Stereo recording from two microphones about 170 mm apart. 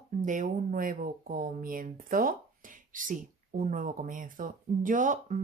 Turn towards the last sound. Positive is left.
turn(degrees=-50)  # may be behind; listen again after turning